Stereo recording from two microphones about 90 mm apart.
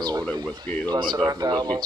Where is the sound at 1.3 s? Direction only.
45° right (ahead or behind).